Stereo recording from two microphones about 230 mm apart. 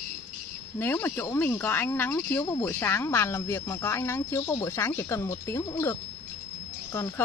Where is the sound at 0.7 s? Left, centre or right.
Centre.